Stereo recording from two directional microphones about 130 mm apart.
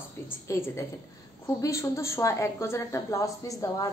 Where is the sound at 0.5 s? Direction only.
20° left (ahead or behind).